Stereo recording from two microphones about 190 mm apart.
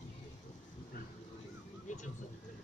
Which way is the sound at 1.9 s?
40° left (ahead or behind).